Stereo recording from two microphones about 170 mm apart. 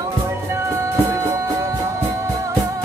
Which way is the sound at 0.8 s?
15° right (ahead or behind).